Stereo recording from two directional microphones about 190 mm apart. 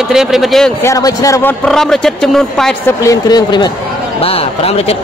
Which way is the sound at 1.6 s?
Centre (ahead or behind).